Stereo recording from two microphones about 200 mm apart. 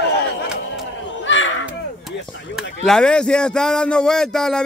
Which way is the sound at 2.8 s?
5° left (ahead or behind).